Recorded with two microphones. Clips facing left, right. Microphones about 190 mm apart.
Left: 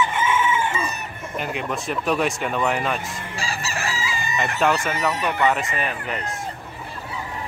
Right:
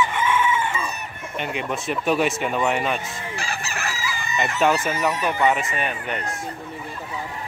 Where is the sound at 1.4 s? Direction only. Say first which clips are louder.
Even; centre (ahead or behind).